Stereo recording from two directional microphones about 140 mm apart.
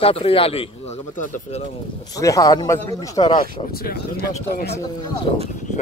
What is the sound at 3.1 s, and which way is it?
Speech, 45° left (ahead or behind).